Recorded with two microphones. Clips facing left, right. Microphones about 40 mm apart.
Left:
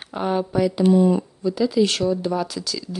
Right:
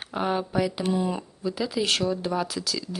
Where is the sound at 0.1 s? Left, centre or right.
Centre.